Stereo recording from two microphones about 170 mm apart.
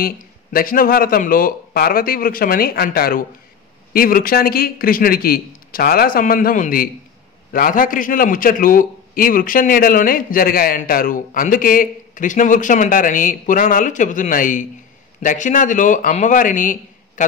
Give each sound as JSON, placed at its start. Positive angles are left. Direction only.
{"t": 0.0, "sound": "a man's voice", "side_deg": 60}